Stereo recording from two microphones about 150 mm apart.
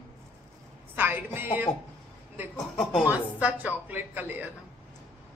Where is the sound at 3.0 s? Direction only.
10° right (ahead or behind).